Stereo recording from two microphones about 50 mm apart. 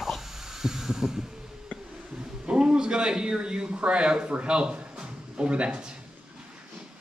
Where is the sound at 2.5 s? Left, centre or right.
Centre.